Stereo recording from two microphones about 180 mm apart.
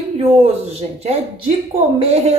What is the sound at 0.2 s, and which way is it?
A woman's voice, 35° right (ahead or behind).